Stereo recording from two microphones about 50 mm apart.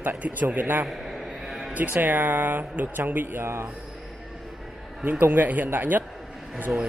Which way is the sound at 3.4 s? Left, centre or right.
Right.